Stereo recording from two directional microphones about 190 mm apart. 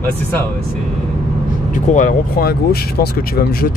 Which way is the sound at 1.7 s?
45° left (ahead or behind).